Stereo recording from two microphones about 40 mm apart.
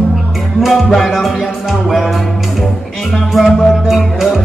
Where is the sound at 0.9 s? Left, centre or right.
Centre.